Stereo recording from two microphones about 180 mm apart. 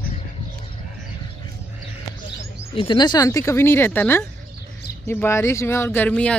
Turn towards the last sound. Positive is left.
turn(degrees=5)  # may be behind; listen again after turning